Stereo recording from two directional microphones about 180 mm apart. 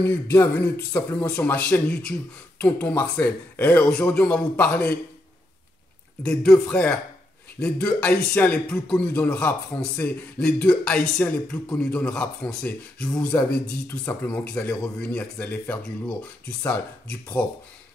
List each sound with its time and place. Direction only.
0.1 s a man's voice: 15° left (ahead or behind)
6.2 s a man's voice: 5° left (ahead or behind)